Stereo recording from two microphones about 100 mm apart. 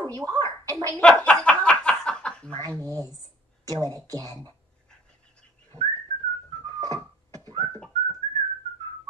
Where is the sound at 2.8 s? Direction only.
35° right (ahead or behind).